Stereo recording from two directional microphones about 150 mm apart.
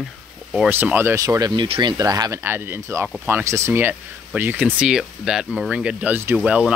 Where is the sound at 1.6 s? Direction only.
35° right (ahead or behind).